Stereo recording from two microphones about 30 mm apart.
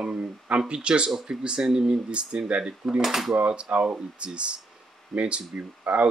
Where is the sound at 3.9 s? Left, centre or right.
Right.